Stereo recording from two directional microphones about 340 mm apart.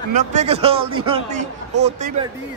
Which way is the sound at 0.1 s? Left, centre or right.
Centre.